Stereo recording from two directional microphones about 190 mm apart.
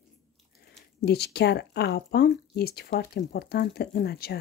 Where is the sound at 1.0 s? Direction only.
60° left (ahead or behind).